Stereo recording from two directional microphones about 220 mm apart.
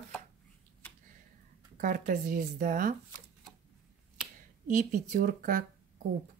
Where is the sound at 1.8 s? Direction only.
35° right (ahead or behind).